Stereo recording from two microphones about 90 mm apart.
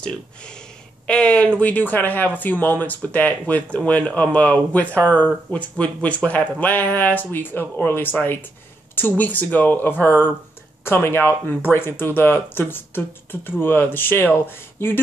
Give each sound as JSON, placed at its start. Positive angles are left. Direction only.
{"t": 0.0, "sound": "speech", "side_deg": 10}